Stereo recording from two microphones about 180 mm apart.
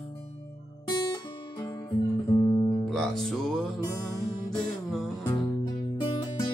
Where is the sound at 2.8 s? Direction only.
Centre (ahead or behind).